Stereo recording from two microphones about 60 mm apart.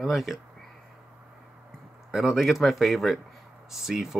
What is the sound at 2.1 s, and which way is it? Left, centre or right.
Speech, centre.